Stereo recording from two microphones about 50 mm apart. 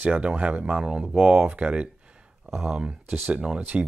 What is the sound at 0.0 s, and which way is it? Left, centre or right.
Speech, right.